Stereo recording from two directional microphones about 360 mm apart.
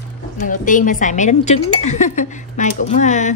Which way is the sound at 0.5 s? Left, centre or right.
Left.